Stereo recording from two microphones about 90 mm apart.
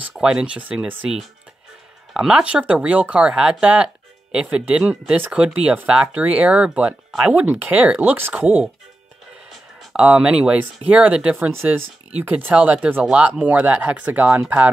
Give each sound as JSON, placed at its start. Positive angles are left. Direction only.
{"t": 0.1, "sound": "speech", "side_deg": -10}
{"t": 2.1, "sound": "speech", "side_deg": -10}
{"t": 7.3, "sound": "speech", "side_deg": -20}
{"t": 9.5, "sound": "speech", "side_deg": -10}
{"t": 11.3, "sound": "speech", "side_deg": -25}